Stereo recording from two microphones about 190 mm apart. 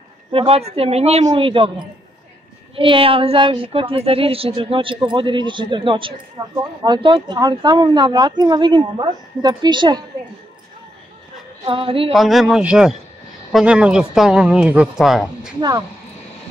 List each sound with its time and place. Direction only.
0.3 s a woman's voice: 30° right (ahead or behind)
2.7 s a woman's voice: 30° right (ahead or behind)
11.6 s a woman's voice: 30° right (ahead or behind)
12.1 s speech: centre (ahead or behind)